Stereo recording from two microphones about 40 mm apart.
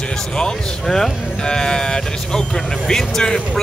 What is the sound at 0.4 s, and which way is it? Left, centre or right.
Speech, centre.